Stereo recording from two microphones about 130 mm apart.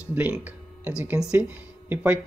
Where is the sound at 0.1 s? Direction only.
10° right (ahead or behind).